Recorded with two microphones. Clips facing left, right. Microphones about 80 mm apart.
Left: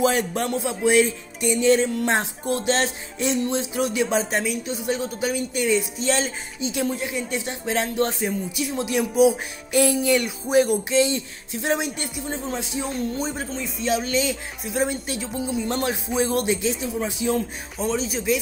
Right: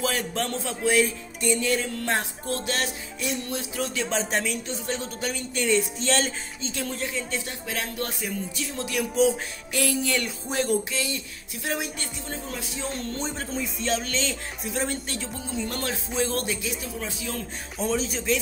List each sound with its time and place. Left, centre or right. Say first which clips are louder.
0.0 s speech: left 6 dB; left; by 6.7 s centre
6.7 s speech: left 5 dB; centre
8.5 s speech: left 6 dB; centre
10.9 s speech: left 10 dB; left
12.9 s speech: left 5 dB; centre
13.8 s speech: left 6 dB; centre
17.7 s speech: left 2 dB; centre